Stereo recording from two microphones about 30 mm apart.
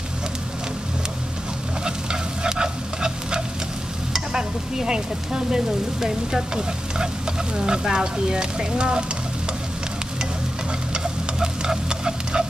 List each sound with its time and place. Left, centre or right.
2.4 s frying: right
4.1 s speech: centre
10.9 s a sound: right